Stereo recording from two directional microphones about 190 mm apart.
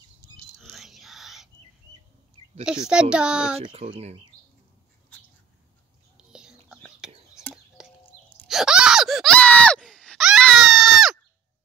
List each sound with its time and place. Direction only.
0.6 s whispering: centre (ahead or behind)
2.9 s a child's voice: 5° right (ahead or behind)
3.5 s speech: 30° right (ahead or behind)
6.1 s whispering: 5° right (ahead or behind)
7.5 s bird: 5° right (ahead or behind)
8.5 s a sound: 5° right (ahead or behind)